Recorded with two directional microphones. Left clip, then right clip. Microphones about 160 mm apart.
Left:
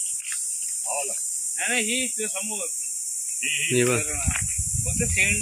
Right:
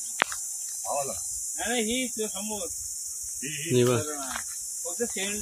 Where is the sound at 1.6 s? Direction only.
70° right (ahead or behind).